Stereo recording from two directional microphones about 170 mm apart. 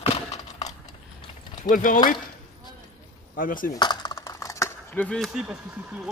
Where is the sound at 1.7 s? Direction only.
50° left (ahead or behind).